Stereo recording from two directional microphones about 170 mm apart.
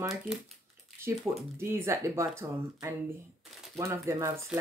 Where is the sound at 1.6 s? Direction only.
15° right (ahead or behind).